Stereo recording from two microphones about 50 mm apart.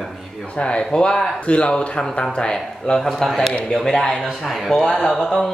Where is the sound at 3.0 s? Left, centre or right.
Centre.